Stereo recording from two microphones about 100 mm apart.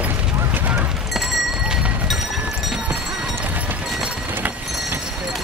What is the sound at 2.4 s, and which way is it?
Clip-clop, 5° right (ahead or behind).